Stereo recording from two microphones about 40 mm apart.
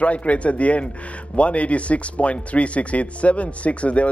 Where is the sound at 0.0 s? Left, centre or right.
Left.